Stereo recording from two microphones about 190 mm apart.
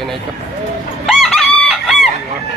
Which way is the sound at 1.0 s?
Centre (ahead or behind).